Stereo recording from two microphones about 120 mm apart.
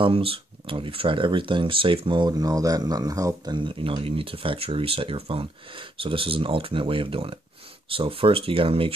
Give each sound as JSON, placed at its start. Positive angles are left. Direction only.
{"t": 0.0, "sound": "speech", "side_deg": -50}